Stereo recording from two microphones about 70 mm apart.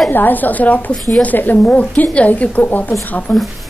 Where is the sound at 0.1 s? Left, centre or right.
Left.